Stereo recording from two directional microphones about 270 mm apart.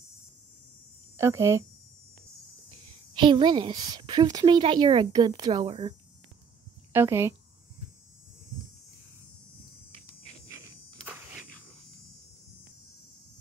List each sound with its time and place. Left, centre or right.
1.1 s speech: centre
3.2 s a woman's voice: centre
11.1 s a sound: centre